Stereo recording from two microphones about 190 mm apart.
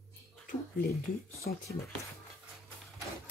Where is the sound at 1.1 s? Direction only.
50° left (ahead or behind).